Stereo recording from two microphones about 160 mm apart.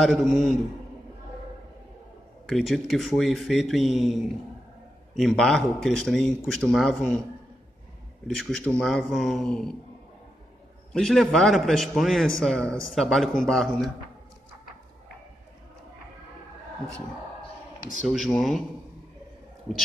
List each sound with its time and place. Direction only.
0.0 s speech: centre (ahead or behind)
2.4 s speech: centre (ahead or behind)
8.3 s speech: centre (ahead or behind)
10.9 s speech: 5° left (ahead or behind)
18.0 s speech: centre (ahead or behind)